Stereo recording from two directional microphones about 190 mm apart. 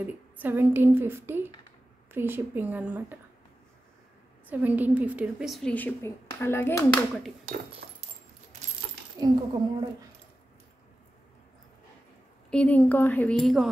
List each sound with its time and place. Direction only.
0.0 s a woman's voice: 10° right (ahead or behind)
4.5 s a woman's voice: 10° right (ahead or behind); by 7.1 s 15° left (ahead or behind)
9.2 s speech: 20° right (ahead or behind)
12.4 s speech: 5° left (ahead or behind)